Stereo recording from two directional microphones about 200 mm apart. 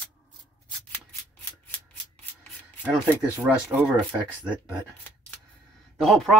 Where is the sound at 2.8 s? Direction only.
5° right (ahead or behind).